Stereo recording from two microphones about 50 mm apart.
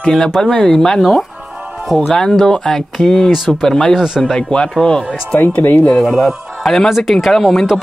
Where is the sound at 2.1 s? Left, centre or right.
Centre.